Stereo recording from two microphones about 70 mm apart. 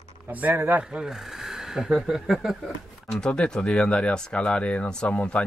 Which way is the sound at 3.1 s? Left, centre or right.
Centre.